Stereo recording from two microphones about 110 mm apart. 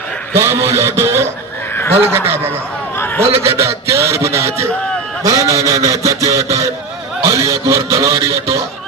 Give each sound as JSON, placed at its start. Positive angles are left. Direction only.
{"t": 0.3, "sound": "a man's voice", "side_deg": -25}